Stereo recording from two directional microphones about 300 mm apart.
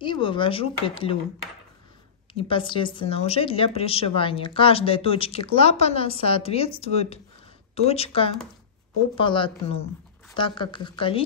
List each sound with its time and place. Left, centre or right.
0.0 s speech: centre
2.3 s speech: centre